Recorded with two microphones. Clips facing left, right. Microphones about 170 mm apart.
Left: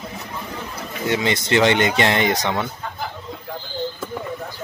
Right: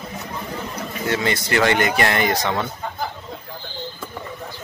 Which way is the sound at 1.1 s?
20° left (ahead or behind).